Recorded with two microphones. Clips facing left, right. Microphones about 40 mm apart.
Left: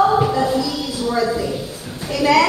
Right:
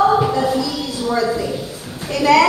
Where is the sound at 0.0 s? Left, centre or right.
Centre.